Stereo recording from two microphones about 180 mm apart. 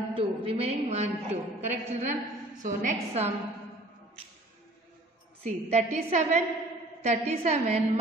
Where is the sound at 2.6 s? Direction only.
40° right (ahead or behind).